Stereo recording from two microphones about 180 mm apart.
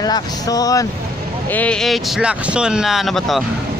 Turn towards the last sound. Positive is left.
turn(degrees=0)  # may be behind; listen again after turning